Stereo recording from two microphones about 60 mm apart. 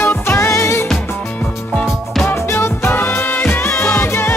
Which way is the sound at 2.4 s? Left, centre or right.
Left.